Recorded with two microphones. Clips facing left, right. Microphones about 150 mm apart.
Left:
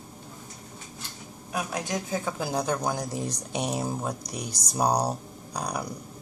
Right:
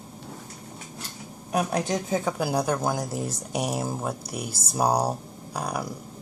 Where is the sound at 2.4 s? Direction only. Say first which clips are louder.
Right 3 dB; 10° right (ahead or behind).